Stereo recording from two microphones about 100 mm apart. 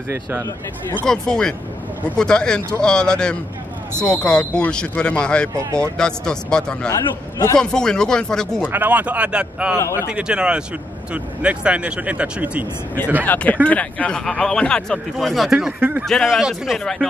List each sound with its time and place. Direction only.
1.0 s a man's voice: 5° left (ahead or behind)
5.6 s speech: 30° right (ahead or behind)
5.9 s speech: 10° left (ahead or behind)
6.9 s a man's voice: 35° left (ahead or behind)
7.5 s speech: 5° left (ahead or behind)
8.6 s speech: 15° right (ahead or behind)
9.8 s speech: 30° left (ahead or behind)
10.0 s speech: 10° right (ahead or behind)
13.2 s speech: 15° left (ahead or behind); by 15.7 s 5° right (ahead or behind)
15.8 s a man's voice: 20° right (ahead or behind)
16.1 s a man's voice: centre (ahead or behind)